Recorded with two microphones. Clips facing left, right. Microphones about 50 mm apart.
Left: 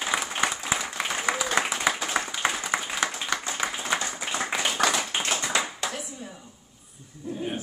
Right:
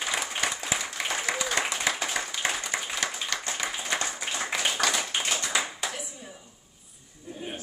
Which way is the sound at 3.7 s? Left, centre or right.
Centre.